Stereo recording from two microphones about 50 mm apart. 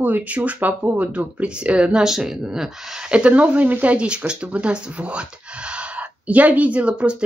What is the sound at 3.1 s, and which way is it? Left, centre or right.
Speech, right.